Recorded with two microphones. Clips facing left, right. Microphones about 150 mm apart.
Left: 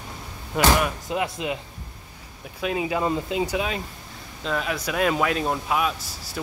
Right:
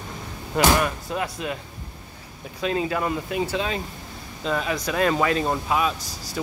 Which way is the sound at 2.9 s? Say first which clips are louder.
Left 1 dB; 20° left (ahead or behind).